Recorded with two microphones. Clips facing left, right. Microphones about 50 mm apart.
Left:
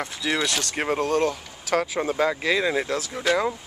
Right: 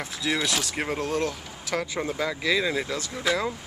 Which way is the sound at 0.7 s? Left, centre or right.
Centre.